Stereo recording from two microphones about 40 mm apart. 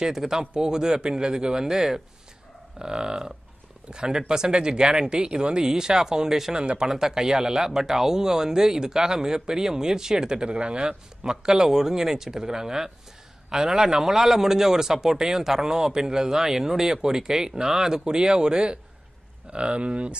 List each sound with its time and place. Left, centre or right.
0.0 s speech: centre
6.6 s speech: right
6.9 s speech: centre; by 20.2 s right